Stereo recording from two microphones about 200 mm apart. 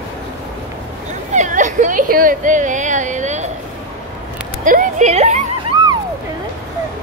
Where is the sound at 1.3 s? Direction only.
40° right (ahead or behind).